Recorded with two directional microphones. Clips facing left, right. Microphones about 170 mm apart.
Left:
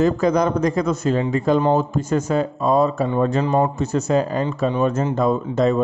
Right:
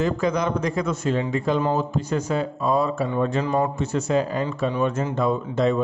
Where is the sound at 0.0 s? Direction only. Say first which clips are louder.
Left 5 dB; 45° left (ahead or behind).